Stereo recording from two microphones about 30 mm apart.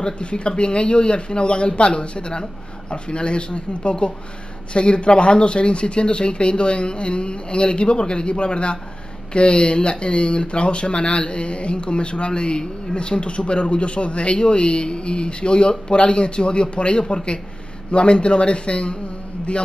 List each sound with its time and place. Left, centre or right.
0.0 s speech: left